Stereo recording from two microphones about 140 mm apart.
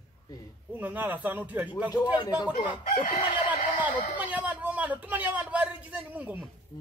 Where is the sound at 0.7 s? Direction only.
10° right (ahead or behind).